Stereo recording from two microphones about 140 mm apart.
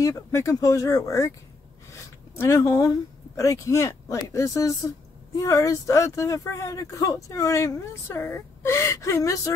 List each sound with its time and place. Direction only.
0.0 s speech: 20° left (ahead or behind)
2.3 s speech: 20° left (ahead or behind)